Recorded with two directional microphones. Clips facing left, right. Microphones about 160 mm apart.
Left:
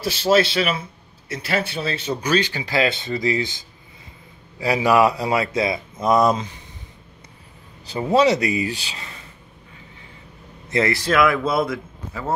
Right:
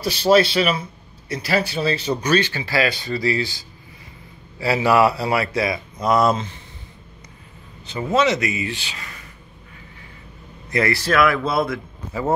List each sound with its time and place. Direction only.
0.0 s speech: centre (ahead or behind)
2.3 s speech: 15° left (ahead or behind)
8.1 s speech: 35° left (ahead or behind)
10.7 s speech: 20° left (ahead or behind)